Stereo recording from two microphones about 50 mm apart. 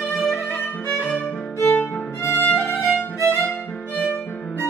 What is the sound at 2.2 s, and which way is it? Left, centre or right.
Music, left.